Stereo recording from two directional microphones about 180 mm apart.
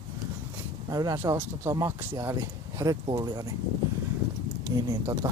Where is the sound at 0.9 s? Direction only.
20° right (ahead or behind).